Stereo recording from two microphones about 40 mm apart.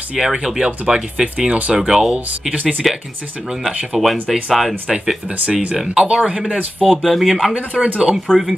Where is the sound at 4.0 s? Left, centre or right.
Centre.